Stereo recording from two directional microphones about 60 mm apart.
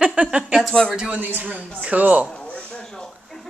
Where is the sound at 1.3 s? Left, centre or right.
Right.